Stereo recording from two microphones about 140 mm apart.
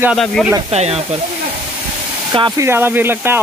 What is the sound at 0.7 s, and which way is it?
Speech, 45° right (ahead or behind).